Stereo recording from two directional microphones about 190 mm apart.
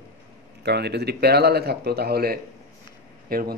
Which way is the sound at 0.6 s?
60° right (ahead or behind).